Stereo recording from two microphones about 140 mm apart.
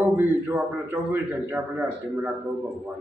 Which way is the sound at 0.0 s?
15° right (ahead or behind).